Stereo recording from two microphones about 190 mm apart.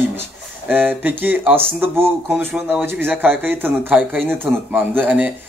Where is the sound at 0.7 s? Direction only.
10° right (ahead or behind).